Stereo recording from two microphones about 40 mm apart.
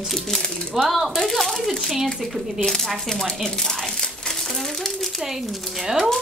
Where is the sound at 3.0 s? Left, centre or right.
Centre.